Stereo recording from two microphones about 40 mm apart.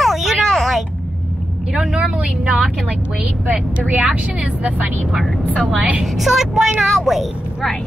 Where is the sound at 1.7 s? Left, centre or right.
Centre.